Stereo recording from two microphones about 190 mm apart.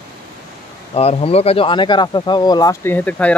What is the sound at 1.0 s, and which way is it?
Speech, 30° left (ahead or behind).